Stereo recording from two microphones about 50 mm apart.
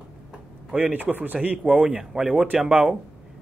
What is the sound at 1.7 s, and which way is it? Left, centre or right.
Speech, centre.